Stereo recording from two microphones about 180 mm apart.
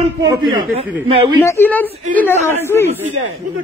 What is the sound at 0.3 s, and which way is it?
A man's voice, 25° right (ahead or behind).